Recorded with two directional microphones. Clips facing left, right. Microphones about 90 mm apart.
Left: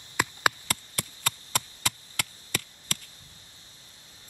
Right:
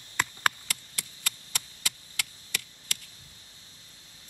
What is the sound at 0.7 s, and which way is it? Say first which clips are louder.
Chop: left 6 dB; 40° left (ahead or behind).